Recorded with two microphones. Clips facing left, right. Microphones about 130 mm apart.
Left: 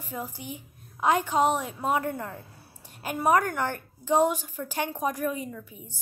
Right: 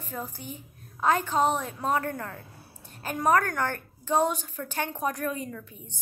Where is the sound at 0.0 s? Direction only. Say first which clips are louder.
Left 1 dB; 15° left (ahead or behind).